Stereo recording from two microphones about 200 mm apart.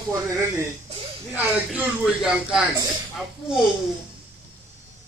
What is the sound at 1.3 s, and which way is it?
Speech, 5° right (ahead or behind).